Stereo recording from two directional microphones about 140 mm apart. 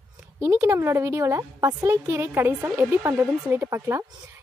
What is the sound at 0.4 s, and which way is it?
Speech, 20° right (ahead or behind).